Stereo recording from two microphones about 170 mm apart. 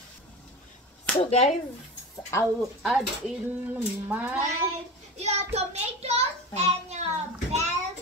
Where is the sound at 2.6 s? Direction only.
Centre (ahead or behind).